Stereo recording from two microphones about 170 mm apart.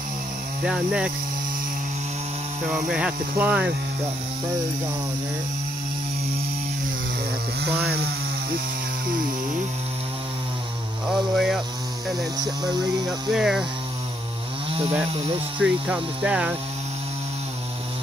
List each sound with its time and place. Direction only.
0.7 s speech: 5° right (ahead or behind)
2.7 s speech: 5° right (ahead or behind)
7.8 s chainsaw: 70° right (ahead or behind)
11.1 s speech: centre (ahead or behind)
13.3 s speech: 5° right (ahead or behind)
14.7 s chainsaw: 35° right (ahead or behind)
15.6 s speech: 5° right (ahead or behind)